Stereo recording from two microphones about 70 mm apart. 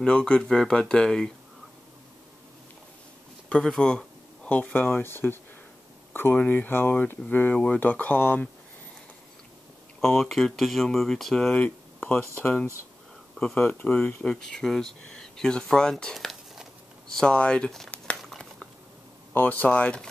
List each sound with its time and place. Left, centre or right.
0.0 s speech: centre
3.4 s speech: centre
4.5 s speech: left
9.9 s speech: centre
12.0 s a sound: left
12.4 s speech: left
14.2 s speech: centre
18.2 s a sound: centre
19.3 s speech: left